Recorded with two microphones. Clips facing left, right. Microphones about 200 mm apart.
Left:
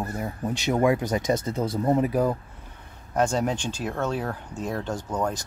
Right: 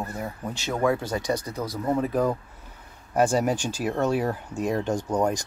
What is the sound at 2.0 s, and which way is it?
Speech, 10° left (ahead or behind).